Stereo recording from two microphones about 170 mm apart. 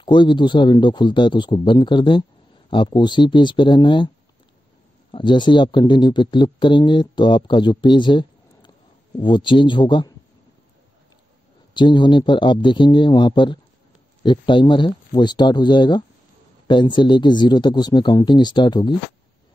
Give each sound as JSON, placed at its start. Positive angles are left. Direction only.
{"t": 0.0, "sound": "speech", "side_deg": 30}
{"t": 5.1, "sound": "speech", "side_deg": 25}
{"t": 11.7, "sound": "speech", "side_deg": 25}